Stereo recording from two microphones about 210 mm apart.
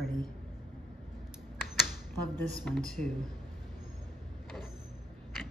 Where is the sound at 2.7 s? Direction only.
5° left (ahead or behind).